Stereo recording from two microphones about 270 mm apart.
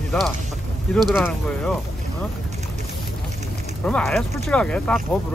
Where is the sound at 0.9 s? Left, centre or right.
Centre.